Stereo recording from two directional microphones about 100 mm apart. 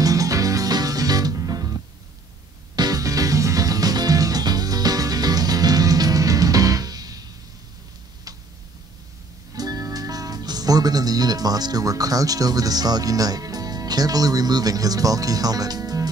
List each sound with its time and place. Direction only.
0.0 s music: 35° right (ahead or behind)
9.6 s speech: 40° right (ahead or behind)